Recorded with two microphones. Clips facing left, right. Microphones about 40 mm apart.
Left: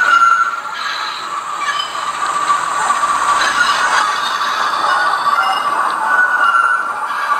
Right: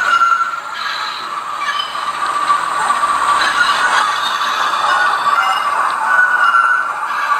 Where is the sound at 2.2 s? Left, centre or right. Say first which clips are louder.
Even; centre; by 5.8 s right.